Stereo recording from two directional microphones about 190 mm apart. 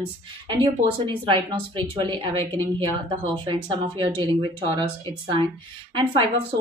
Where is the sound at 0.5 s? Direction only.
25° right (ahead or behind).